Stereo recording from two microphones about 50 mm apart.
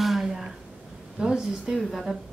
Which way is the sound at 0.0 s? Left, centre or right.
Centre.